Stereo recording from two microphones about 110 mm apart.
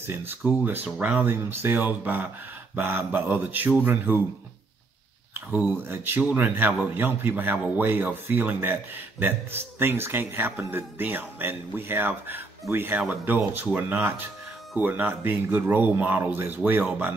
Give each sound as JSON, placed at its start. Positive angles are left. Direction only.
{"t": 0.0, "sound": "speech", "side_deg": -20}
{"t": 5.9, "sound": "speech", "side_deg": -20}